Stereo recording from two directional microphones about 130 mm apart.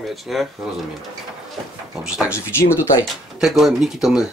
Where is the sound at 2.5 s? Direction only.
20° left (ahead or behind).